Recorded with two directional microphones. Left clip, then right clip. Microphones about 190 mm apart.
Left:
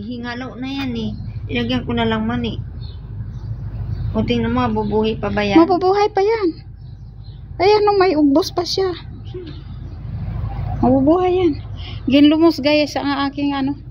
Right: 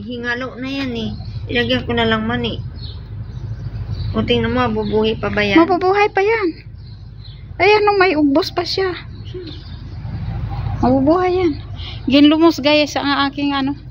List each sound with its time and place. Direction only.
0.1 s a woman's voice: 55° left (ahead or behind)
4.1 s a woman's voice: 55° left (ahead or behind)
5.6 s speech: 15° left (ahead or behind)
7.5 s speech: 15° left (ahead or behind)
10.8 s speech: 10° left (ahead or behind)